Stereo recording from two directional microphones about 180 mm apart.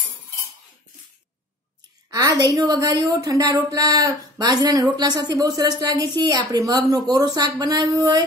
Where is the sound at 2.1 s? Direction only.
20° right (ahead or behind).